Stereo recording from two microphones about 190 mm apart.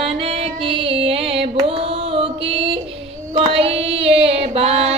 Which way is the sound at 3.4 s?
30° right (ahead or behind).